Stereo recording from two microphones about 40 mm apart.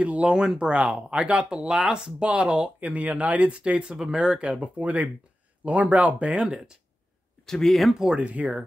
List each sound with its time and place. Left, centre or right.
0.0 s speech: right
0.4 s speech: right
6.2 s speech: right
7.4 s speech: centre
7.9 s speech: centre
8.2 s speech: right